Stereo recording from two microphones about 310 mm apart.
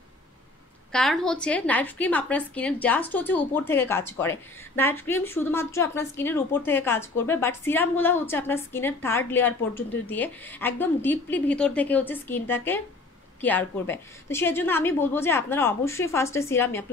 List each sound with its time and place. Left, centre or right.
0.9 s a woman's voice: centre